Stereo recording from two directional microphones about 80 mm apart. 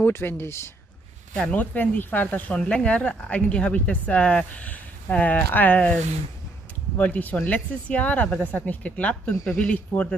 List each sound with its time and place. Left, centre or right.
0.0 s speech: left
1.3 s speech: centre
7.0 s speech: left